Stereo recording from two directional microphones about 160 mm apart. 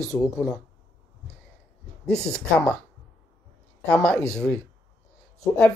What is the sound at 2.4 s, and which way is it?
Speech, 5° left (ahead or behind).